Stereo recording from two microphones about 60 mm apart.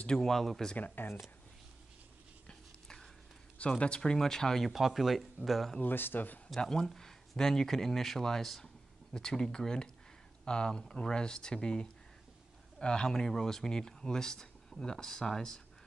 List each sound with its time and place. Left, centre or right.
0.2 s speech: centre
0.7 s speech: left
2.4 s a sound: centre
3.5 s speech: centre
5.8 s speech: left
6.6 s speech: centre